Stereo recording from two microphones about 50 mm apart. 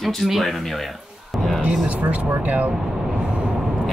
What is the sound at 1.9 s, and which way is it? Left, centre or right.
Speech, right.